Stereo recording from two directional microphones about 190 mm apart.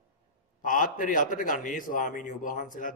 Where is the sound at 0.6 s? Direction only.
45° left (ahead or behind).